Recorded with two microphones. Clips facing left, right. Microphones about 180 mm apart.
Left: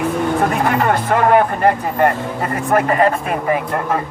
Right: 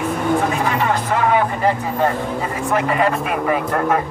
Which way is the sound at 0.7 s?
55° left (ahead or behind).